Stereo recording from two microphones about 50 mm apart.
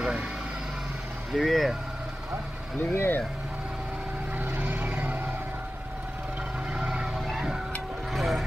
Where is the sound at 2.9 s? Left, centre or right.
Left.